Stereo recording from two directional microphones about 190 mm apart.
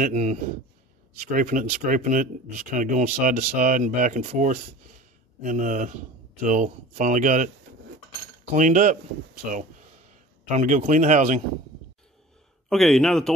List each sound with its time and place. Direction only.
0.0 s speech: 35° right (ahead or behind)
8.5 s speech: 40° right (ahead or behind)
10.5 s speech: 45° right (ahead or behind)
12.6 s a man's voice: centre (ahead or behind)